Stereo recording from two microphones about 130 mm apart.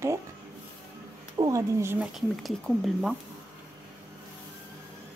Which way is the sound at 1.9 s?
5° right (ahead or behind).